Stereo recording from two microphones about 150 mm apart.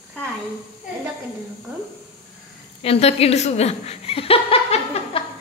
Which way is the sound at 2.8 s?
40° left (ahead or behind).